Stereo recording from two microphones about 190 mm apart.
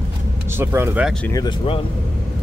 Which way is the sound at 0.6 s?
10° right (ahead or behind).